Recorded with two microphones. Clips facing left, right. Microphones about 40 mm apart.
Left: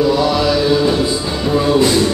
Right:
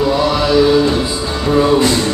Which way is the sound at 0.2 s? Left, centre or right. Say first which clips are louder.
Even; centre.